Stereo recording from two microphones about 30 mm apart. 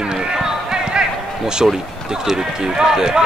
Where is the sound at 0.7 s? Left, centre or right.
Right.